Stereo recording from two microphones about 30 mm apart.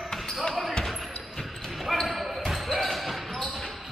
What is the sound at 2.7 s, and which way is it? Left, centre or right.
Basketball bounce, centre.